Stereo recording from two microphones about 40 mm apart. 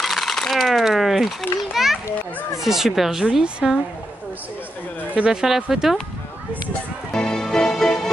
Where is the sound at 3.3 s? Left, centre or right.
Right.